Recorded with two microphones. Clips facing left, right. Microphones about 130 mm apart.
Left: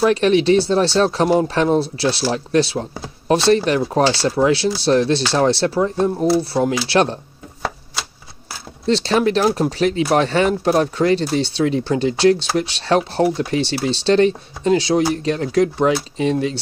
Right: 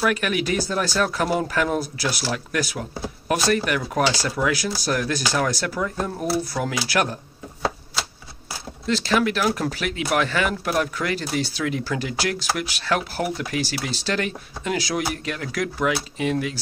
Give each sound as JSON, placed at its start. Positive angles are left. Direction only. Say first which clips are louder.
{"t": 0.0, "sound": "speech", "louder": "left 8 dB", "side_deg": 30}
{"t": 8.8, "sound": "speech", "louder": "left 5 dB", "side_deg": 30}